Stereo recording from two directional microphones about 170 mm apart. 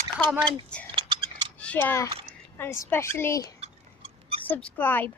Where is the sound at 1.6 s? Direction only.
10° left (ahead or behind).